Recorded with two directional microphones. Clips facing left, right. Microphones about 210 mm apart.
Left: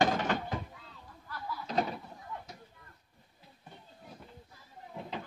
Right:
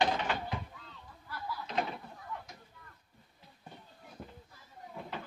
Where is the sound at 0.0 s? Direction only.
45° left (ahead or behind).